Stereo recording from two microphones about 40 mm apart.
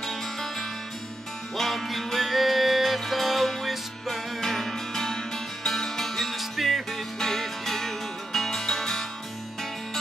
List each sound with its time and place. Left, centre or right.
0.0 s music: centre